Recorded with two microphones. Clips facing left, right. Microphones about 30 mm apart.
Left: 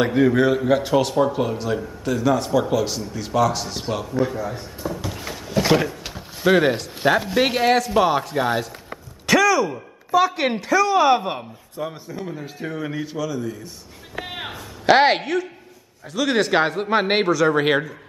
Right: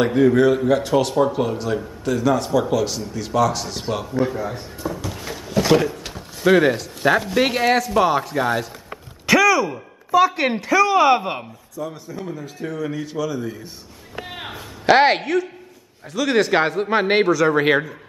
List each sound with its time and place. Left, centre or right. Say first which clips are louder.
0.0 s speech: right 2 dB; centre
5.0 s a sound: even; centre
5.6 s speech: right 2 dB; centre
11.8 s a man's voice: even; left
13.3 s speech: even; centre
14.2 s a sound: left 2 dB; centre
14.5 s a woman's voice: right 1 dB; centre